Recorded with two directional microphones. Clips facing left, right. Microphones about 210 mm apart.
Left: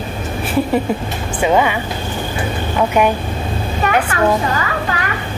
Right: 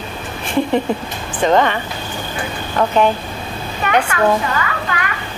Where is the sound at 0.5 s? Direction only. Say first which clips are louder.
Even; 5° left (ahead or behind).